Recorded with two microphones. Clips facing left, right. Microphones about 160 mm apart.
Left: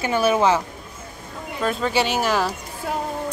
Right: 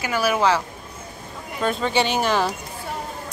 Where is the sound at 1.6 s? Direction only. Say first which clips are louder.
Even; centre (ahead or behind).